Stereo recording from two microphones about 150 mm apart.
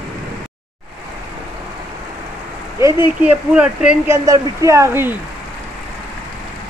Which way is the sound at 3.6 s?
5° right (ahead or behind).